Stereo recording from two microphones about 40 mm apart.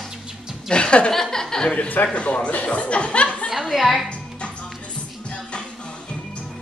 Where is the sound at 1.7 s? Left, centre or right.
Left.